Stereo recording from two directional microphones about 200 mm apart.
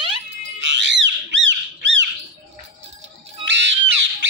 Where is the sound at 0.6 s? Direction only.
65° right (ahead or behind).